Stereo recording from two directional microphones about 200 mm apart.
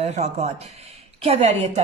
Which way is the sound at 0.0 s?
35° right (ahead or behind).